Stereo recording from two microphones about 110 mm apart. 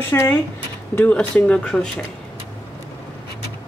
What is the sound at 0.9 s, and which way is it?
Speech, 10° left (ahead or behind).